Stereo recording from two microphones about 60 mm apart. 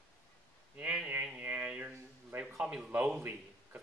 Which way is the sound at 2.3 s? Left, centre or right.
Right.